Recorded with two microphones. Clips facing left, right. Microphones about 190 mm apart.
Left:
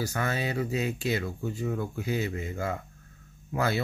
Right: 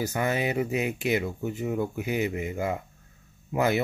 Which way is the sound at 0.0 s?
20° right (ahead or behind).